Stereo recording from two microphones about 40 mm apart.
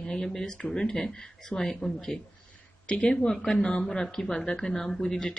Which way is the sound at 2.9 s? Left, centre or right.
Left.